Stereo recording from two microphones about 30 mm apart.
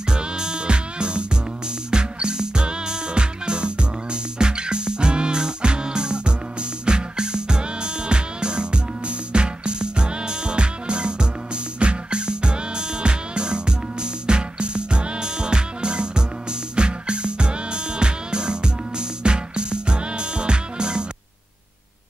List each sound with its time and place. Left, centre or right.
0.1 s music: right